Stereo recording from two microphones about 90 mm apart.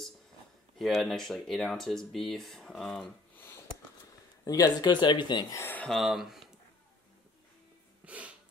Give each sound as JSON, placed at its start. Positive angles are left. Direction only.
{"t": 0.7, "sound": "speech", "side_deg": 0}
{"t": 3.3, "sound": "a sound", "side_deg": 25}
{"t": 4.5, "sound": "speech", "side_deg": 45}
{"t": 5.5, "sound": "speech", "side_deg": 30}
{"t": 5.9, "sound": "speech", "side_deg": 0}
{"t": 8.0, "sound": "music", "side_deg": -15}